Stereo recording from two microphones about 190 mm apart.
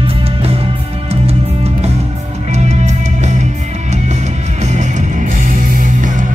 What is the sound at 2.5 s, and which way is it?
Music, 35° right (ahead or behind).